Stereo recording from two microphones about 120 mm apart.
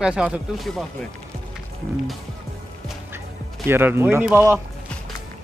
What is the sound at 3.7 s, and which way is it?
Speech, 20° right (ahead or behind).